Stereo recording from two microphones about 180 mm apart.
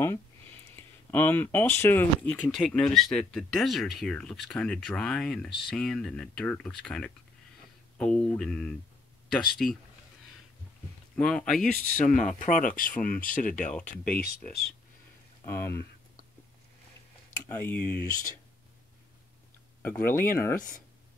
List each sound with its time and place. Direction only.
1.1 s speech: 10° left (ahead or behind)
11.1 s speech: 5° left (ahead or behind)
11.9 s speech: 45° left (ahead or behind)
13.7 s speech: 10° left (ahead or behind)
15.4 s speech: 15° left (ahead or behind)
17.5 s speech: 10° left (ahead or behind)
19.8 s speech: 10° left (ahead or behind)